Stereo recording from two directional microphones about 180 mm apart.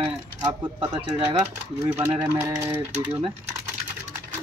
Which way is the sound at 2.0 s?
15° right (ahead or behind).